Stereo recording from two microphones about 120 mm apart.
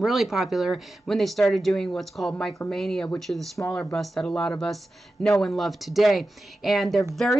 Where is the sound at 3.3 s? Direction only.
20° left (ahead or behind).